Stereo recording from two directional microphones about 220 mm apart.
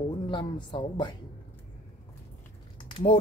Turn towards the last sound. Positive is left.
turn(degrees=25)  # may be behind; listen again after turning